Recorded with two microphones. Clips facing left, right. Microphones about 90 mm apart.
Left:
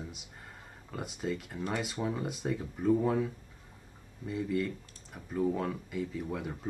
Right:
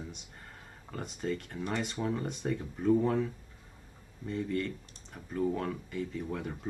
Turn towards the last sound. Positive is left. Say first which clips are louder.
# even
turn(degrees=5)  # may be behind; listen again after turning